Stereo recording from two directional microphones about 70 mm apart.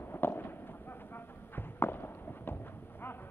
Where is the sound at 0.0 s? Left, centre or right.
Left.